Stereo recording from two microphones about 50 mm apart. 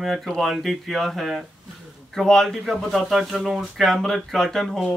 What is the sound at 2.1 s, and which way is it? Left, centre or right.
A man's voice, centre.